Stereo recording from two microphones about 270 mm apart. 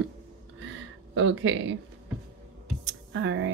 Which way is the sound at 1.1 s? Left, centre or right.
Right.